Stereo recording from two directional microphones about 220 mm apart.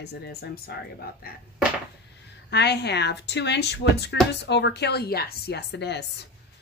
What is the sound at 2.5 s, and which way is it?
A woman's voice, 50° left (ahead or behind).